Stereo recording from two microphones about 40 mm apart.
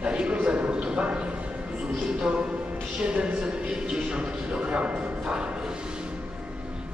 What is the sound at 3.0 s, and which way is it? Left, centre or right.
A man's voice, right.